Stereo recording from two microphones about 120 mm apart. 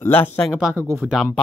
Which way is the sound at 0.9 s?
10° right (ahead or behind).